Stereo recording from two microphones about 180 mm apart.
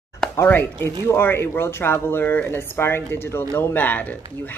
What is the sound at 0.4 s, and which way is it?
Speech, 10° left (ahead or behind).